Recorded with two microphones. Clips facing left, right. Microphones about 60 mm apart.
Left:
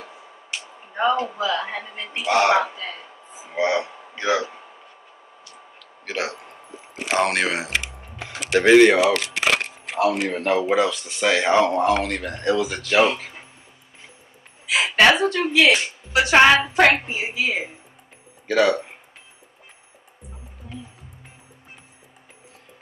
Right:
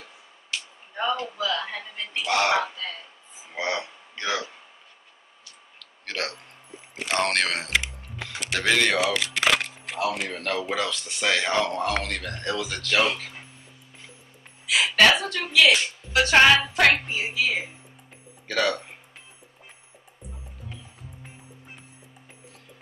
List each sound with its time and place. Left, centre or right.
0.5 s speech: left
5.8 s a sound: centre
7.0 s speech: centre
8.0 s mechanisms: left
8.5 s a woman's voice: left
9.7 s keys jangling: left
10.2 s a woman's voice: left
14.7 s a woman's voice: left